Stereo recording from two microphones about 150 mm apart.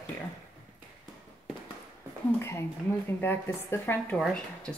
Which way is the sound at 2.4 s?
20° left (ahead or behind).